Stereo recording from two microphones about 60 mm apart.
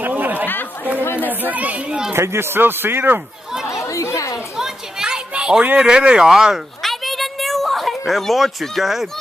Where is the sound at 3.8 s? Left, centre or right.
Left.